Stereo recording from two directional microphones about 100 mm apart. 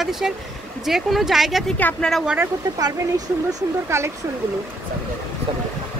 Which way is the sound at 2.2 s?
15° right (ahead or behind).